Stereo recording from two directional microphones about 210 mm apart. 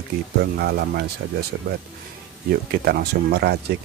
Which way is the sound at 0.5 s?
50° right (ahead or behind).